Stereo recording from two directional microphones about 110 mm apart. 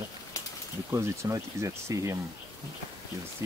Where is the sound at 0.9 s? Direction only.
25° right (ahead or behind).